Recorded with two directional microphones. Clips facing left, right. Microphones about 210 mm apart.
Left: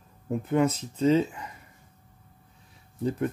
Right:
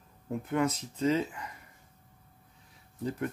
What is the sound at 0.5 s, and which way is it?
Speech, 25° left (ahead or behind).